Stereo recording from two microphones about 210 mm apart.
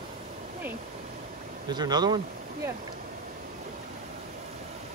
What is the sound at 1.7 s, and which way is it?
Speech, 20° right (ahead or behind).